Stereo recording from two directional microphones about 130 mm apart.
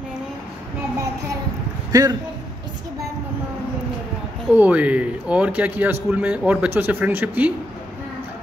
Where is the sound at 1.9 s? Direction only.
30° right (ahead or behind).